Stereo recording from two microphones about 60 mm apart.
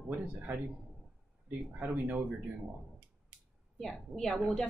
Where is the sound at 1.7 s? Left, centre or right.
Right.